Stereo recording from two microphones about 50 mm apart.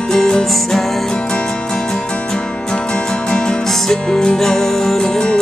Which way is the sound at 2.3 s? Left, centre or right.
Centre.